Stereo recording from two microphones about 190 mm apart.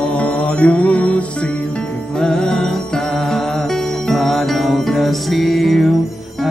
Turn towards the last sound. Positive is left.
turn(degrees=0)  # may be behind; listen again after turning